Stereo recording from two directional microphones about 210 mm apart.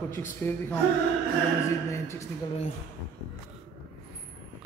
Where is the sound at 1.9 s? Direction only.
15° left (ahead or behind).